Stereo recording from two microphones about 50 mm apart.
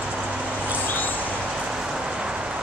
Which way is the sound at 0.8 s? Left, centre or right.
Left.